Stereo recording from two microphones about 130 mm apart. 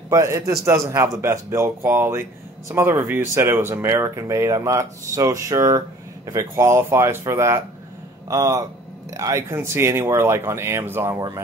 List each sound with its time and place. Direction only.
0.1 s speech: 25° right (ahead or behind)
11.1 s speech: 30° right (ahead or behind)